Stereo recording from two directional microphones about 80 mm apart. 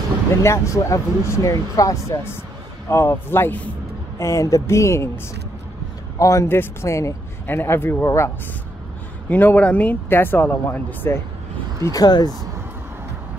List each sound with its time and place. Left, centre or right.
0.4 s speech: left
4.2 s speech: left
6.5 s speech: left
9.3 s speech: left
11.9 s speech: left